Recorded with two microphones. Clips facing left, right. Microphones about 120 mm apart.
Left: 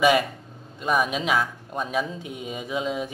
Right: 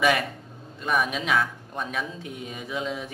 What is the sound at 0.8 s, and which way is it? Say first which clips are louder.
Speech: left 2 dB; 20° left (ahead or behind).